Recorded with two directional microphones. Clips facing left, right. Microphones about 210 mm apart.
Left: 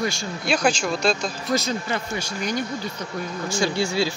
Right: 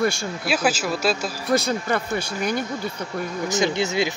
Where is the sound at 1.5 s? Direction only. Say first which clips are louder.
Right 4 dB; 55° right (ahead or behind).